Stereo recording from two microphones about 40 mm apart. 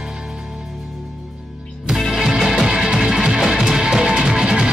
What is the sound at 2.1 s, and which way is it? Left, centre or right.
Music, centre.